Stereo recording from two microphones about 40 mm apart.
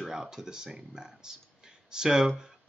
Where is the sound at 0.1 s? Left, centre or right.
Centre.